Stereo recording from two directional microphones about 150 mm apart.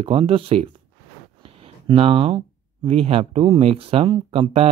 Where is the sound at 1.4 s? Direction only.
40° right (ahead or behind).